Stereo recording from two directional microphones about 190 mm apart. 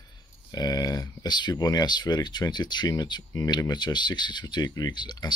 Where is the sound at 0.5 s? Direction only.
20° left (ahead or behind).